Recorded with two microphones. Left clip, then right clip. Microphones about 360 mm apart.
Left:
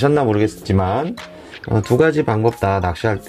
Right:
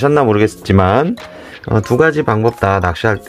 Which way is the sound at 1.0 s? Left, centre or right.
Centre.